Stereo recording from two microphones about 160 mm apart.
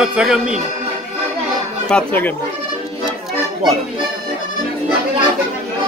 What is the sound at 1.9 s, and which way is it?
Speech, 10° left (ahead or behind).